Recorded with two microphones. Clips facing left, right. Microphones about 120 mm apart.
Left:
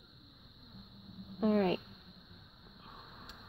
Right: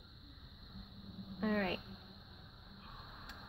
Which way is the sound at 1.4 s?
25° left (ahead or behind).